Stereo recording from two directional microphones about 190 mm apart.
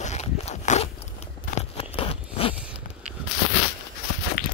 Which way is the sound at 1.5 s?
30° left (ahead or behind).